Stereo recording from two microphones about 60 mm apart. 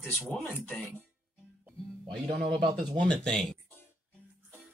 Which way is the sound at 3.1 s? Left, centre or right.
Centre.